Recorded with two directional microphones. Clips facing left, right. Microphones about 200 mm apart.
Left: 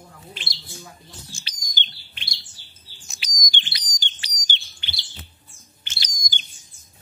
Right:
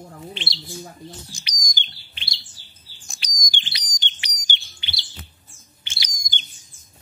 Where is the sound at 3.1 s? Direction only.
Centre (ahead or behind).